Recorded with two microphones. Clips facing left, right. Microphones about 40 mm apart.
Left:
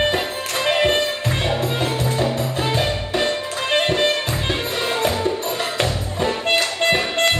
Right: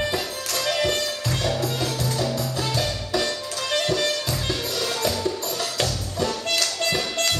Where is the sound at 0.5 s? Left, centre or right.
Left.